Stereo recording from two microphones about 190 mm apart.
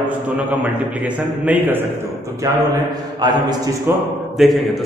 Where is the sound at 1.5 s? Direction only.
10° right (ahead or behind).